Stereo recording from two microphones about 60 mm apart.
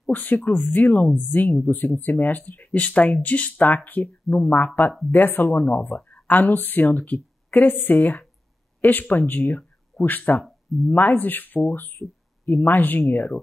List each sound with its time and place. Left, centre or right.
0.1 s speech: left